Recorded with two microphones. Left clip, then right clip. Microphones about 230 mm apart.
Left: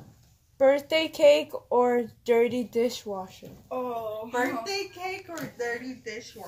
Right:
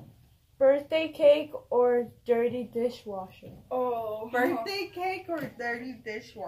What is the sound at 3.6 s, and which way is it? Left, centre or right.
Speech, centre.